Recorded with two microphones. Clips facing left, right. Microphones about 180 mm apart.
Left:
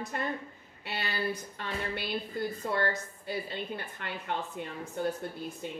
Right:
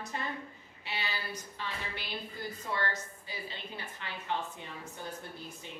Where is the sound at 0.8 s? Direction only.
55° left (ahead or behind).